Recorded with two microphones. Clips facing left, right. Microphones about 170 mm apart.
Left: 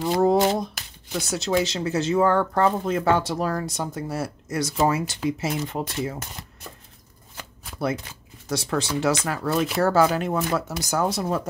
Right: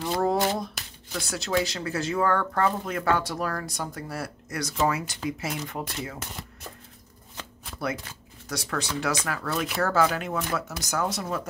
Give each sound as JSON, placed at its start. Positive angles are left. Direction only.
{"t": 0.0, "sound": "a sound", "side_deg": 20}
{"t": 1.1, "sound": "speech", "side_deg": 20}
{"t": 7.3, "sound": "shuffling cards", "side_deg": 10}
{"t": 8.5, "sound": "speech", "side_deg": 25}